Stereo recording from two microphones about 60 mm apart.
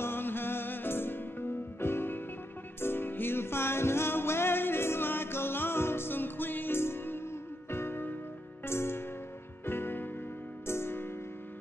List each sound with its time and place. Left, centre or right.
0.0 s music: left